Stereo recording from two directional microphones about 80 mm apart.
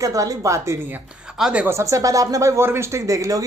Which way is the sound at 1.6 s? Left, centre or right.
Right.